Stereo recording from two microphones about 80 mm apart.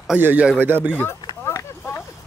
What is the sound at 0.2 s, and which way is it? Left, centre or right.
Speech, right.